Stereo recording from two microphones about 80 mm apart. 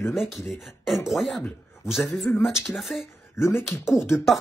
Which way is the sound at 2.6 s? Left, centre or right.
Centre.